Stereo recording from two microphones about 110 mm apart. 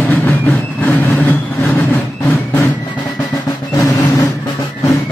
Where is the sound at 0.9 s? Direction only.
15° left (ahead or behind).